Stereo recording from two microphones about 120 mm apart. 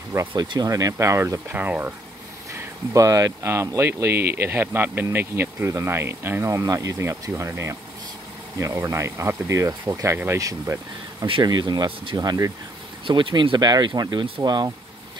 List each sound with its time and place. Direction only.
0.4 s speech: 35° right (ahead or behind); by 2.0 s 15° right (ahead or behind)
2.9 s speech: 30° right (ahead or behind)
11.4 s speech: 35° right (ahead or behind)
13.0 s speech: 45° right (ahead or behind)